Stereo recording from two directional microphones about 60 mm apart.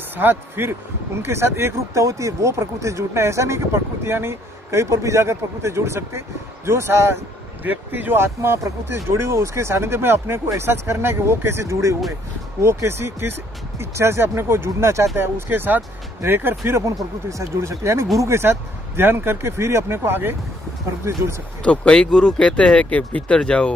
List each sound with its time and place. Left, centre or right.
0.1 s speech: right
2.0 s speech: right
7.6 s speech: right
12.6 s speech: right
16.9 s speech: right
21.0 s speech: right
21.6 s speech: centre